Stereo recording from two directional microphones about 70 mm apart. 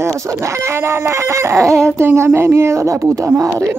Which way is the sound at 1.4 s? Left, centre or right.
Right.